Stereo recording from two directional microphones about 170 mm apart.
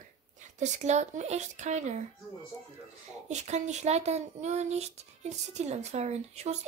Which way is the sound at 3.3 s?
40° right (ahead or behind).